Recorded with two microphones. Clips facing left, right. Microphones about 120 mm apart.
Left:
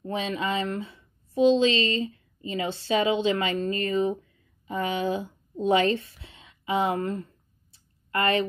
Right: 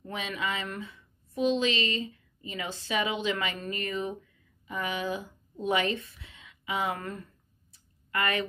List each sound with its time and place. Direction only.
0.0 s a woman's voice: 35° left (ahead or behind)